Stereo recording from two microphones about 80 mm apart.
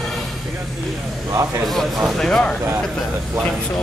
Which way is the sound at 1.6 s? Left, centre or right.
Centre.